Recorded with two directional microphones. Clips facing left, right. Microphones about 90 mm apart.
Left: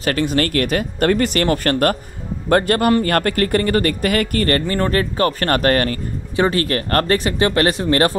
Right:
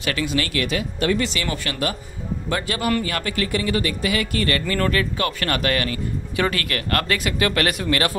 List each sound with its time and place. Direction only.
0.0 s speech: 45° left (ahead or behind)
6.3 s speech: 30° left (ahead or behind)